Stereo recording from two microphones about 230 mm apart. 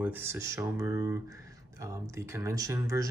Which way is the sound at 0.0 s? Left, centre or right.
Centre.